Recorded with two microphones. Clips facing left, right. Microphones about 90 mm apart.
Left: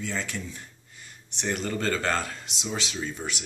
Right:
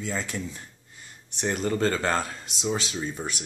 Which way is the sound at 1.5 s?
25° right (ahead or behind).